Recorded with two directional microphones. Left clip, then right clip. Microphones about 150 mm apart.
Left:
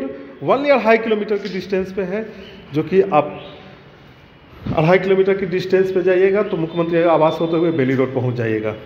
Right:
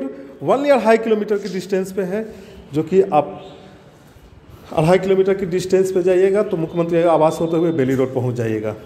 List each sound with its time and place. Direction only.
0.5 s a man's voice: 30° right (ahead or behind)
4.7 s a man's voice: 20° right (ahead or behind)